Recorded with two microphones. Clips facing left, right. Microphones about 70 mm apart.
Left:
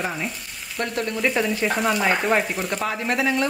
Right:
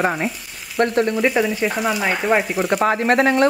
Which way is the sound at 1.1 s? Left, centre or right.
Centre.